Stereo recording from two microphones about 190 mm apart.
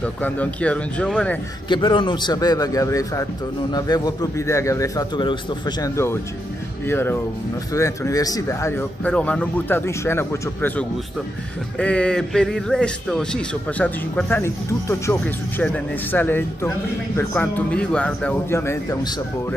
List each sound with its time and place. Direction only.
0.0 s a man's voice: 5° left (ahead or behind)
1.7 s a man's voice: 25° left (ahead or behind)